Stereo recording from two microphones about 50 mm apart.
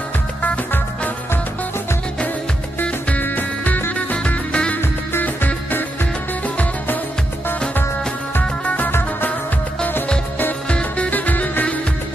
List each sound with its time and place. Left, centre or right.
0.4 s music: left
2.8 s music: left
5.2 s music: left
6.4 s music: left
8.4 s music: left
10.7 s music: left